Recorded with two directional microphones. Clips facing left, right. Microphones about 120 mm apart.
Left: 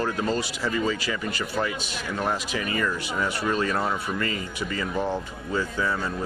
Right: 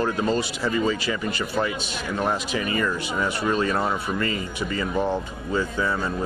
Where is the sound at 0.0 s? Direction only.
25° right (ahead or behind).